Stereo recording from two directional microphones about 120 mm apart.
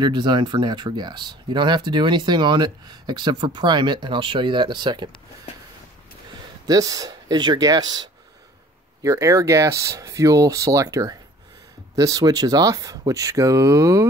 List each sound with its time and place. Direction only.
0.0 s speech: 40° right (ahead or behind)
6.7 s speech: 30° right (ahead or behind)